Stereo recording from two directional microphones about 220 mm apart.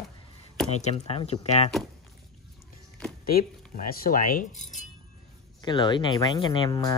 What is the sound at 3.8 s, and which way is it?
Speech, 40° left (ahead or behind).